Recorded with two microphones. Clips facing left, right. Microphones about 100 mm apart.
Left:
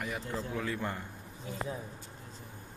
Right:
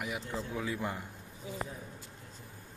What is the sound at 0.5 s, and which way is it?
Speech, 15° right (ahead or behind).